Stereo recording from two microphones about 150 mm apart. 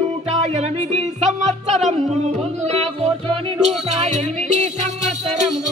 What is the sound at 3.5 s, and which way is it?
Music, 45° right (ahead or behind).